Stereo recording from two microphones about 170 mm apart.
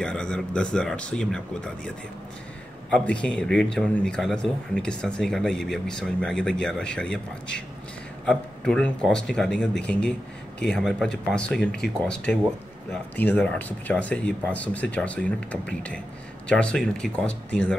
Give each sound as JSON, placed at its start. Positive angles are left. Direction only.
{"t": 0.0, "sound": "speech", "side_deg": 5}